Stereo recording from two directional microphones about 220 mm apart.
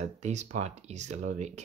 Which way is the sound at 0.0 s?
30° right (ahead or behind).